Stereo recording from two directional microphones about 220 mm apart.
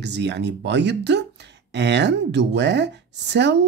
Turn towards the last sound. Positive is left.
turn(degrees=-50)  # may be behind; listen again after turning